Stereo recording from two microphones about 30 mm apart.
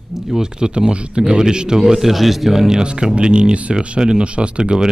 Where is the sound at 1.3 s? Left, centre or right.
Right.